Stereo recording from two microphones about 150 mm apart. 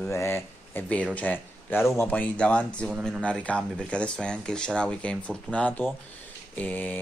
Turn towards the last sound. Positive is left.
turn(degrees=10)  # may be behind; listen again after turning